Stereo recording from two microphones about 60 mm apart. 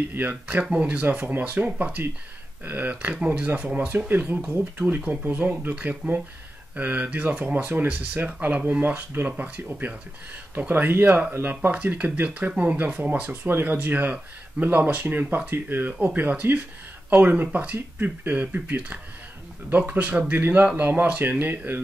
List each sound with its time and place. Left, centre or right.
0.1 s speech: right
4.4 s speech: centre
13.3 s speech: right